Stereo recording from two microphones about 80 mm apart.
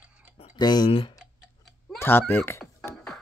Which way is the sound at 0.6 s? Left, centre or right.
Left.